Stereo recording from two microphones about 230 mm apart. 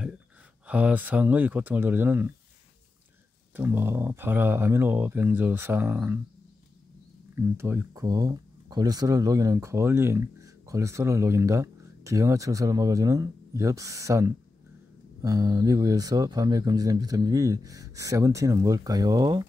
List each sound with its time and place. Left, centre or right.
0.7 s speech: centre
3.5 s speech: centre
7.3 s speech: centre